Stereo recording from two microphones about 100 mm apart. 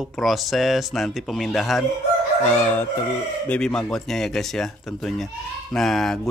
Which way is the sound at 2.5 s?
15° left (ahead or behind).